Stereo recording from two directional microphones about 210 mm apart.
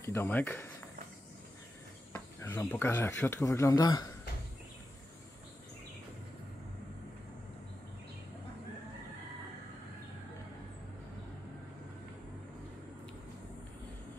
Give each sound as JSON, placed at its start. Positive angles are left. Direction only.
{"t": 0.0, "sound": "speech", "side_deg": 10}
{"t": 2.1, "sound": "speech", "side_deg": 10}